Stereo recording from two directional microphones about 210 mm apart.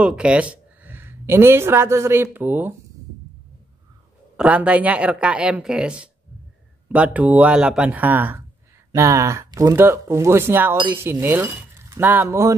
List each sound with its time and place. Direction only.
0.0 s speech: 5° right (ahead or behind)
4.4 s speech: 5° right (ahead or behind)